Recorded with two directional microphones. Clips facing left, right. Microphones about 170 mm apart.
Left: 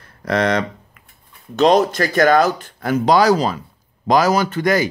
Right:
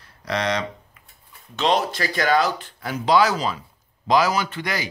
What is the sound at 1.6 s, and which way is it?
A man's voice, 40° left (ahead or behind).